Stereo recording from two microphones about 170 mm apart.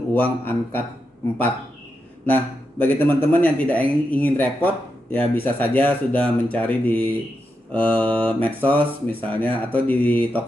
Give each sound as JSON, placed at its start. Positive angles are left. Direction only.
{"t": 0.1, "sound": "speech", "side_deg": 10}
{"t": 2.2, "sound": "speech", "side_deg": 10}